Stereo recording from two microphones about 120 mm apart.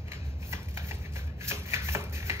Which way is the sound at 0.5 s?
20° right (ahead or behind).